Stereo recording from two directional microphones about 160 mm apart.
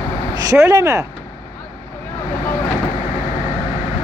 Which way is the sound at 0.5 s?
20° right (ahead or behind).